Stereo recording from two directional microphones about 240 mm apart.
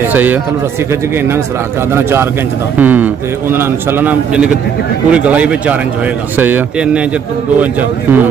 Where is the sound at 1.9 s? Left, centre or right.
Centre.